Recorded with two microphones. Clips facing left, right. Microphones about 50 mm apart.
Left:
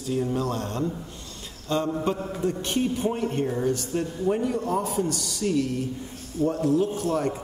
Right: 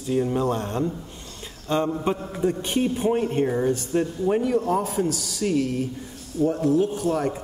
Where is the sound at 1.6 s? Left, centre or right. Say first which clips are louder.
Right 2 dB; right.